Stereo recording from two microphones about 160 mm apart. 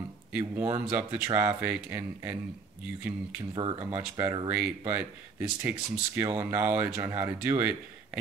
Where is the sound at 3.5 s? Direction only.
30° right (ahead or behind).